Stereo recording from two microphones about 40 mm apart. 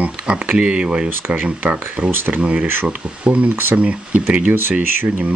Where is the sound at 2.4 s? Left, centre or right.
Right.